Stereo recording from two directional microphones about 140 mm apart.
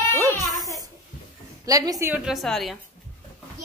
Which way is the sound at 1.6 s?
25° right (ahead or behind).